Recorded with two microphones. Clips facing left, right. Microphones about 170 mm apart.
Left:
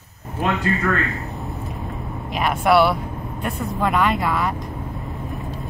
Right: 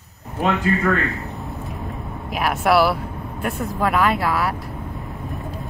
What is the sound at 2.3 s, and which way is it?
Speech, 5° right (ahead or behind).